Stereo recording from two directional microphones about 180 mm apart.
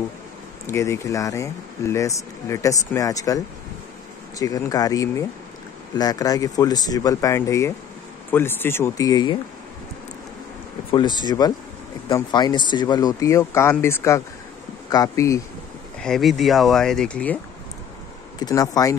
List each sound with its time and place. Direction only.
0.7 s speech: 15° left (ahead or behind)
10.9 s speech: 25° left (ahead or behind)
16.0 s speech: centre (ahead or behind)
18.4 s speech: 20° left (ahead or behind)